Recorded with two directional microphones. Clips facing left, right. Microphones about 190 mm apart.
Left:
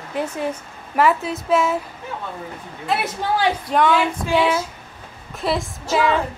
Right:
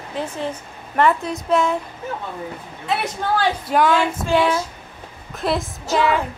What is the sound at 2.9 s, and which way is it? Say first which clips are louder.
A woman's voice: even; centre (ahead or behind).